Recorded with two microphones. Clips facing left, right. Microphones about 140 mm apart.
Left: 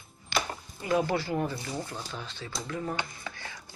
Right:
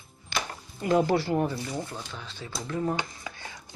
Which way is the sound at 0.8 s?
30° right (ahead or behind).